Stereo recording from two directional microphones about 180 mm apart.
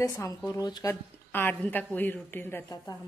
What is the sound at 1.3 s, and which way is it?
Speech, 10° left (ahead or behind).